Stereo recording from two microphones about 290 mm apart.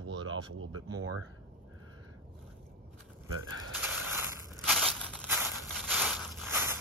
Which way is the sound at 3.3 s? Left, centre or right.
Right.